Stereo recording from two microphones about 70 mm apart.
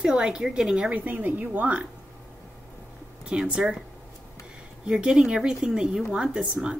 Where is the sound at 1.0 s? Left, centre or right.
Right.